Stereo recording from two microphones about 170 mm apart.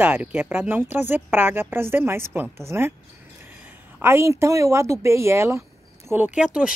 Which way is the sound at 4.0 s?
15° right (ahead or behind).